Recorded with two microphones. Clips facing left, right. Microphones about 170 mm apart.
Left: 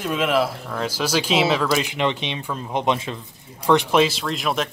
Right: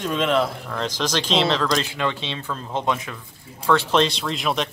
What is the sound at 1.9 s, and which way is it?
Speech, 20° left (ahead or behind).